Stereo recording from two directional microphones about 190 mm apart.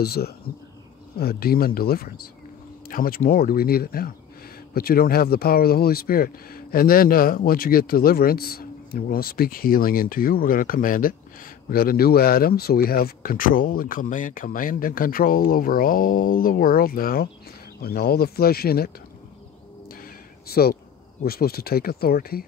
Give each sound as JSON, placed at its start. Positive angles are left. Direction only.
{"t": 0.0, "sound": "speech", "side_deg": 55}
{"t": 19.9, "sound": "a sound", "side_deg": 50}
{"t": 21.2, "sound": "speech", "side_deg": 55}